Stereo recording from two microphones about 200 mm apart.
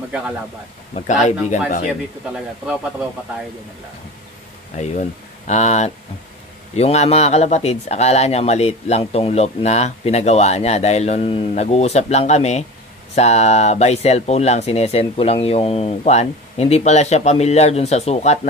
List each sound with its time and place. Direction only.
0.9 s speech: 35° left (ahead or behind)
2.3 s a man's voice: 5° right (ahead or behind)
4.8 s speech: 35° left (ahead or behind)